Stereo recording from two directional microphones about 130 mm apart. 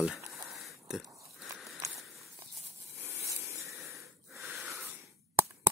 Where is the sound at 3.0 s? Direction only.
20° right (ahead or behind).